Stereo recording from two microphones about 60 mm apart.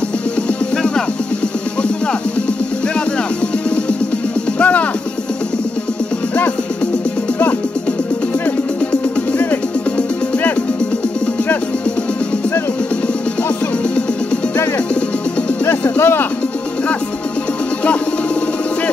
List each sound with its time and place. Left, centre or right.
4.6 s music: left
16.0 s music: left